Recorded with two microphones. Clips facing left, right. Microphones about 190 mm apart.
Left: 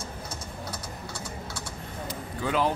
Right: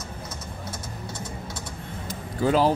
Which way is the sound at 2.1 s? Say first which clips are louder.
Right 7 dB; 35° right (ahead or behind).